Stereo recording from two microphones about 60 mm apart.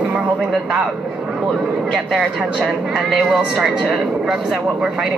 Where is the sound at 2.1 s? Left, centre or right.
Centre.